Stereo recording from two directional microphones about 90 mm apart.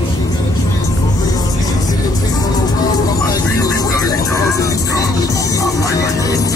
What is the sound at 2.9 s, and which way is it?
Music, 45° left (ahead or behind).